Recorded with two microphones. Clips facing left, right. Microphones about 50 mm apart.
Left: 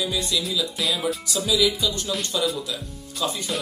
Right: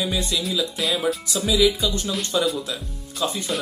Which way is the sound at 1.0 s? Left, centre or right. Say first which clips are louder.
Right 2 dB; right.